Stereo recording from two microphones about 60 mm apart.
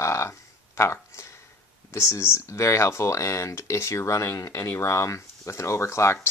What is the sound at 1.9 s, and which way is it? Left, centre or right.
Speech, left.